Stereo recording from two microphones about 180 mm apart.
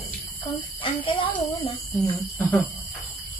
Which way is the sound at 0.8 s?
30° left (ahead or behind).